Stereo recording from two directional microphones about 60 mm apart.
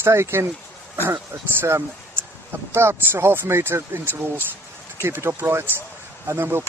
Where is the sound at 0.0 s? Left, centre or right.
Right.